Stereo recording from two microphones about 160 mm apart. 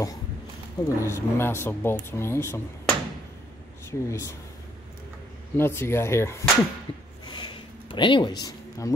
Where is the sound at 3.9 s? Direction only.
15° left (ahead or behind).